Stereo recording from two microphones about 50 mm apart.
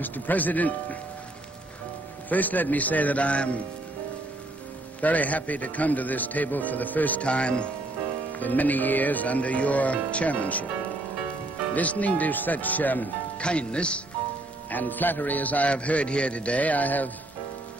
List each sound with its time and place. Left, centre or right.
0.0 s a man's voice: left
2.2 s a man's voice: left
5.0 s a man's voice: left
7.2 s speech: left
8.3 s a man's voice: left
11.7 s a man's voice: left
13.4 s speech: left
14.7 s a man's voice: left